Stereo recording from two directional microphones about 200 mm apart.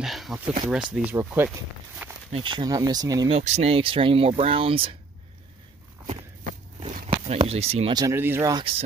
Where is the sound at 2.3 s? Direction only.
25° right (ahead or behind).